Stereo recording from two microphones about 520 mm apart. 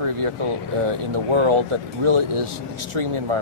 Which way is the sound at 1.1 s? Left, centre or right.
Right.